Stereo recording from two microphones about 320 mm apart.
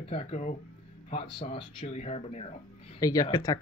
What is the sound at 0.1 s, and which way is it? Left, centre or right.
Speech, centre.